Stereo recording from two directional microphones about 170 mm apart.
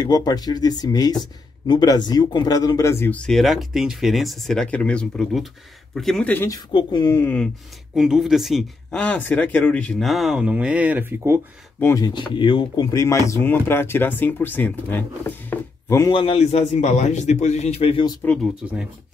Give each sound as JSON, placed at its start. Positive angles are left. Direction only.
{"t": 0.0, "sound": "speech", "side_deg": 25}
{"t": 6.7, "sound": "speech", "side_deg": 25}
{"t": 7.2, "sound": "speech", "side_deg": 10}
{"t": 7.9, "sound": "speech", "side_deg": -5}
{"t": 11.8, "sound": "speech", "side_deg": 20}
{"t": 16.1, "sound": "a man's voice", "side_deg": 30}
{"t": 18.2, "sound": "speech", "side_deg": 5}